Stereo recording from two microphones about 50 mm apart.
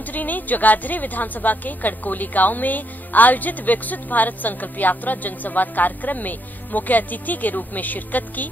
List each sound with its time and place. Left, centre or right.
0.1 s a woman's voice: left